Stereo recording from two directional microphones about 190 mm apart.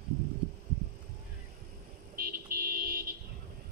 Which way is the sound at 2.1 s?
50° right (ahead or behind).